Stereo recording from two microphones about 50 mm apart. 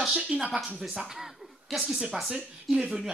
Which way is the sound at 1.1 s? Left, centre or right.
Centre.